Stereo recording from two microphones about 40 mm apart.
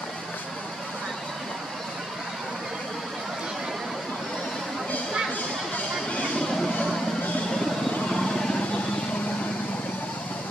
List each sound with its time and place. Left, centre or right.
8.1 s vehicle: centre